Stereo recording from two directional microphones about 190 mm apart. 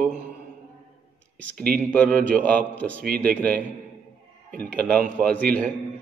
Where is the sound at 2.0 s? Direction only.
45° right (ahead or behind).